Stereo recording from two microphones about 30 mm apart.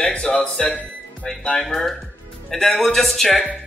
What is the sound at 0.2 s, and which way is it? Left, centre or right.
Speech, left.